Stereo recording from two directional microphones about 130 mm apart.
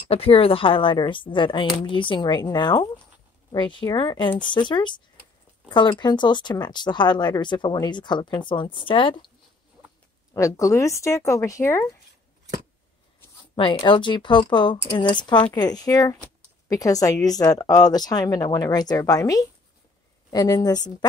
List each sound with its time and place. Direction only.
0.1 s speech: 50° left (ahead or behind)
10.3 s speech: 25° left (ahead or behind)
13.6 s speech: 35° left (ahead or behind)